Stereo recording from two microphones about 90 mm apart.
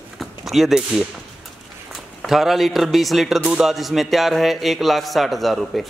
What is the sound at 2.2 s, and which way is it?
Speech, 5° right (ahead or behind).